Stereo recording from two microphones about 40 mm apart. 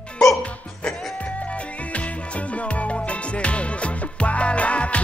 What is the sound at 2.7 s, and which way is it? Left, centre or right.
Music, left.